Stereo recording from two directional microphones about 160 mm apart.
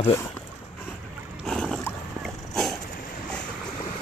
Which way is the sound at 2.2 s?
Centre (ahead or behind).